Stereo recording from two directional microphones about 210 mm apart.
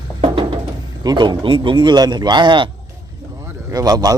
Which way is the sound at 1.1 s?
20° right (ahead or behind).